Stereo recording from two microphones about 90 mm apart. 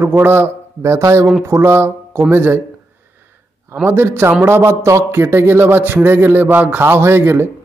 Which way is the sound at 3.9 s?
25° right (ahead or behind).